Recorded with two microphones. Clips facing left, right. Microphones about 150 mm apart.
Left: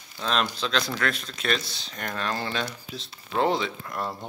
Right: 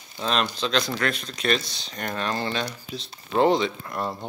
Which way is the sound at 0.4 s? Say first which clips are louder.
Right 2 dB; 5° left (ahead or behind).